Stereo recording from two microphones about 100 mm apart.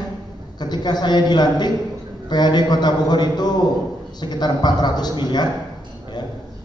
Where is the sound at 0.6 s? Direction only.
45° left (ahead or behind).